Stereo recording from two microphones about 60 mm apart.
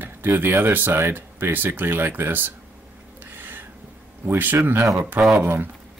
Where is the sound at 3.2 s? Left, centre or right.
Right.